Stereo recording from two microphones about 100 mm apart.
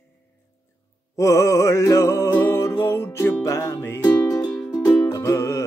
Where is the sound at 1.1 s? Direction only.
30° left (ahead or behind).